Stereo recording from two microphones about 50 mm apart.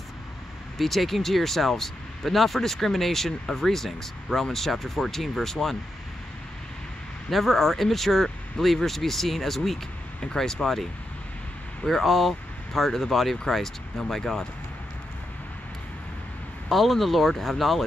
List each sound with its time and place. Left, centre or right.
0.7 s speech: centre
7.2 s speech: centre
16.6 s speech: centre